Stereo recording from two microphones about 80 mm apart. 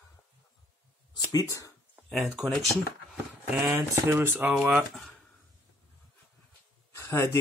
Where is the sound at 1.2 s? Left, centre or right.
Left.